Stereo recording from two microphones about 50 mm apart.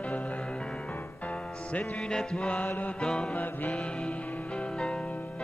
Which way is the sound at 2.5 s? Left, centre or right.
Left.